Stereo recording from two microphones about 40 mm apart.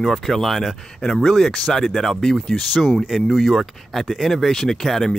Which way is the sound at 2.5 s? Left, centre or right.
Centre.